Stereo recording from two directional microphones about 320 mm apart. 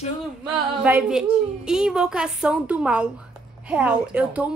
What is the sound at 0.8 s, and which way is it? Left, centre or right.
A woman's voice, centre.